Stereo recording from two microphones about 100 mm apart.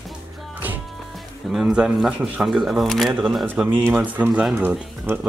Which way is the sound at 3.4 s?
15° right (ahead or behind).